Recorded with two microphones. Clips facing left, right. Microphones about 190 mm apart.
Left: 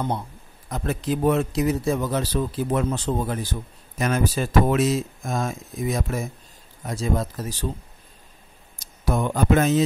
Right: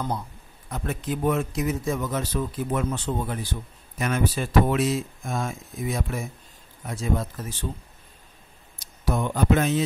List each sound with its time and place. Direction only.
0.7 s speech: 35° left (ahead or behind)
9.0 s speech: 50° left (ahead or behind)